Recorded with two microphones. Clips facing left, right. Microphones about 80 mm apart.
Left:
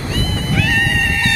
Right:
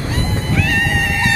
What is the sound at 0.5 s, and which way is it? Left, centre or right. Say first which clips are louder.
Music: left 1 dB; centre.